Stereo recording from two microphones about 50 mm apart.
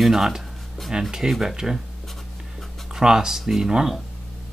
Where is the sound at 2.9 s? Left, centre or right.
Centre.